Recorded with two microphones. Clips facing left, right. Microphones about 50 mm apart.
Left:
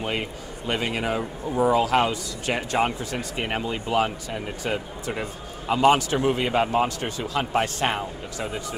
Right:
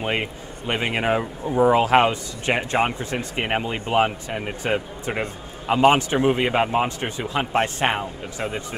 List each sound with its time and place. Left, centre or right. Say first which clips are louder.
0.0 s a man's voice: right 3 dB; right